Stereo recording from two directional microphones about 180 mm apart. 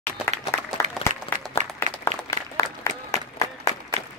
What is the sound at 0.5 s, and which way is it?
Applause, 15° left (ahead or behind).